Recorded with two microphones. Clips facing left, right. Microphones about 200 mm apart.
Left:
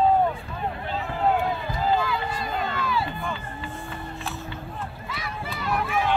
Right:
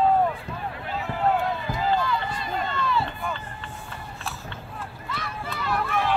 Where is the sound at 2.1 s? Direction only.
5° left (ahead or behind).